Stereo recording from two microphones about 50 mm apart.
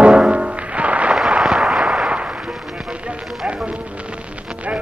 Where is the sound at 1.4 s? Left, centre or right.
Centre.